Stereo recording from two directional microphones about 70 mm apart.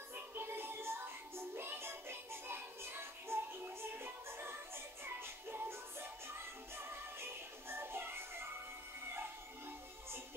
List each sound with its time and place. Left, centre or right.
0.1 s music: right